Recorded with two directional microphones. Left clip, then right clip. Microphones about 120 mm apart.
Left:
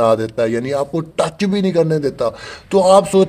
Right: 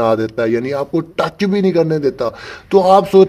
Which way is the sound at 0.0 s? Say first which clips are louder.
Even; 20° right (ahead or behind).